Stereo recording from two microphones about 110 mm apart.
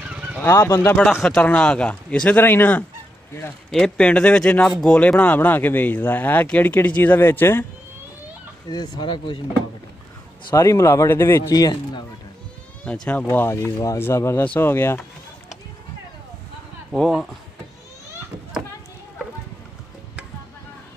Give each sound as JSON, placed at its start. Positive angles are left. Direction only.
{"t": 0.0, "sound": "fowl", "side_deg": -10}
{"t": 0.4, "sound": "speech", "side_deg": 20}
{"t": 1.2, "sound": "speech", "side_deg": 10}
{"t": 3.7, "sound": "speech", "side_deg": 5}
{"t": 8.6, "sound": "speech", "side_deg": 40}
{"t": 10.5, "sound": "speech", "side_deg": 30}
{"t": 11.5, "sound": "speech", "side_deg": 35}
{"t": 12.8, "sound": "speech", "side_deg": 10}
{"t": 13.3, "sound": "speech", "side_deg": 25}
{"t": 16.9, "sound": "speech", "side_deg": 0}